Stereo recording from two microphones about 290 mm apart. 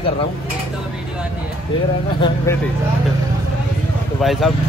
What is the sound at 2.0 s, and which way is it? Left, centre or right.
Speech, centre.